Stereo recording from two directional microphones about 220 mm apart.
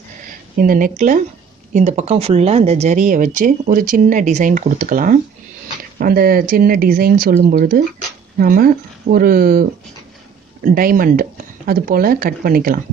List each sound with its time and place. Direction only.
0.6 s speech: 40° right (ahead or behind)